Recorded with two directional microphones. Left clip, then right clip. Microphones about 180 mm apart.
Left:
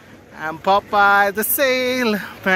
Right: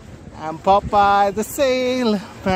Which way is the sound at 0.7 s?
5° right (ahead or behind).